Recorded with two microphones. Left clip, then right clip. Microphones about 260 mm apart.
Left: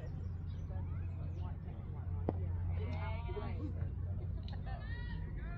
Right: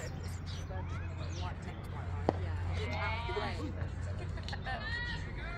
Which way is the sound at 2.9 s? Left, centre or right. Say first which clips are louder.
Right 11 dB; right.